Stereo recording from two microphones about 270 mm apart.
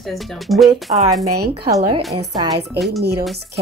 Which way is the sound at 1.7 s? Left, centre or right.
Centre.